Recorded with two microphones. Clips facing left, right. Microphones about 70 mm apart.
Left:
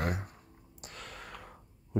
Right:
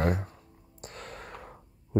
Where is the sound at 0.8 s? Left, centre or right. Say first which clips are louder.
Right 4 dB; right.